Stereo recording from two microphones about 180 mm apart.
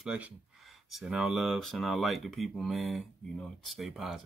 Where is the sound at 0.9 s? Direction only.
Centre (ahead or behind).